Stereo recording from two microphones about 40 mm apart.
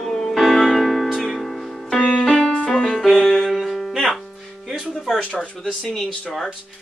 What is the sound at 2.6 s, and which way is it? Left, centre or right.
Music, centre.